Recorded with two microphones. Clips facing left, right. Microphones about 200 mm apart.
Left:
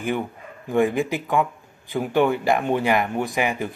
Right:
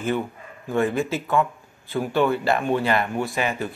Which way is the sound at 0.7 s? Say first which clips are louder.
Left 2 dB; 15° left (ahead or behind).